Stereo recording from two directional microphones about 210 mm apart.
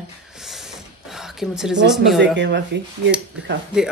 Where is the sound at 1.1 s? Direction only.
Centre (ahead or behind).